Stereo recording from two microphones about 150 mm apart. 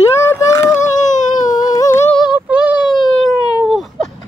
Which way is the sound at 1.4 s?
25° left (ahead or behind).